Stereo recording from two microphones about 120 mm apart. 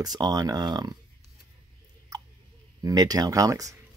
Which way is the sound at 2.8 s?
30° right (ahead or behind).